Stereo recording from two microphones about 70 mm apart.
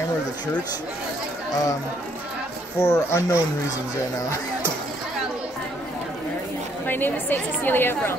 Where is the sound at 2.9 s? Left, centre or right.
Left.